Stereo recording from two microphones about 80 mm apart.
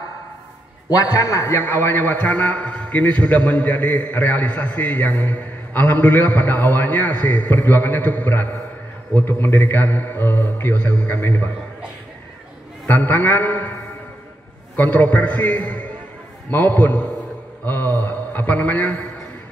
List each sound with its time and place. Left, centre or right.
0.8 s a man's voice: left
12.9 s a man's voice: left
14.8 s a man's voice: left